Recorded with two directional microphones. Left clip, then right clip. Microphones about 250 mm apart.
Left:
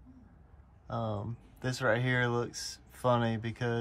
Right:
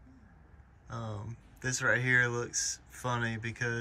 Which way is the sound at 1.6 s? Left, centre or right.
Centre.